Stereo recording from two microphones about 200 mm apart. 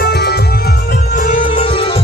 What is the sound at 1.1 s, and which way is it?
Music, 40° left (ahead or behind).